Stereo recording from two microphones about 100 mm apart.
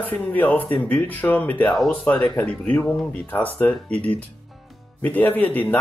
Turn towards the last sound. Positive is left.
turn(degrees=15)  # may be behind; listen again after turning